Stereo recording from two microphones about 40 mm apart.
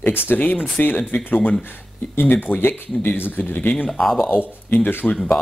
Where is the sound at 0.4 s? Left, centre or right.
Left.